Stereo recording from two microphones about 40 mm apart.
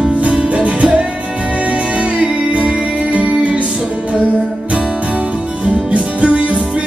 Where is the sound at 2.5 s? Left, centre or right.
Right.